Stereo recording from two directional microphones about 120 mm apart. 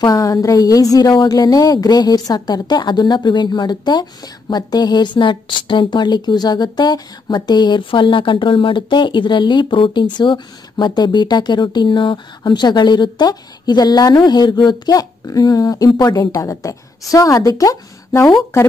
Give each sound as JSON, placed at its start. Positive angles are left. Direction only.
{"t": 0.0, "sound": "a woman's voice", "side_deg": 30}